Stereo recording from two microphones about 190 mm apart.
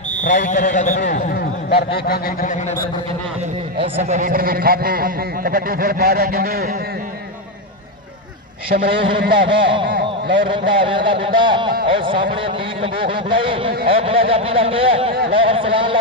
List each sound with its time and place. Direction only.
0.2 s a man's voice: 40° left (ahead or behind)
1.3 s a sound: 55° left (ahead or behind)
3.8 s a man's voice: 30° right (ahead or behind); by 6.7 s 50° right (ahead or behind)
8.7 s speech: 25° right (ahead or behind)
9.8 s a sound: 50° right (ahead or behind)
10.5 s speech: 25° right (ahead or behind)